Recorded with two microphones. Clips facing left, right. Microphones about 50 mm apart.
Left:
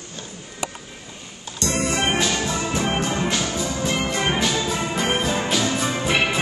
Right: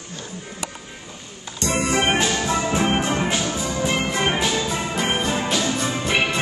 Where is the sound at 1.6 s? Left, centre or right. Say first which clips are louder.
Right 2 dB; centre.